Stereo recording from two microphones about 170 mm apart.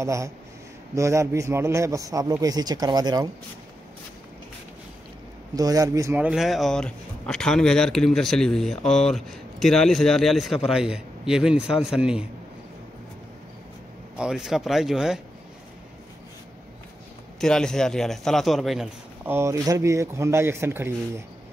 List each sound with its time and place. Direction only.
0.0 s a man's voice: 15° right (ahead or behind)
5.5 s speech: 20° right (ahead or behind); by 12.3 s 5° right (ahead or behind)
14.1 s speech: 5° right (ahead or behind)
17.4 s speech: 5° left (ahead or behind)
19.2 s a man's voice: 15° right (ahead or behind)